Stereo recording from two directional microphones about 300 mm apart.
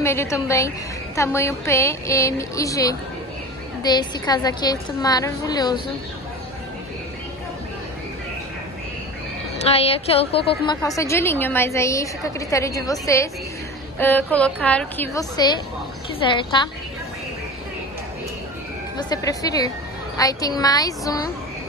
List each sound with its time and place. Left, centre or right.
0.0 s a woman's voice: centre
9.7 s a woman's voice: centre
18.9 s a woman's voice: centre